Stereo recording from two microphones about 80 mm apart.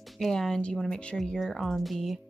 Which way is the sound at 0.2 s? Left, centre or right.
Centre.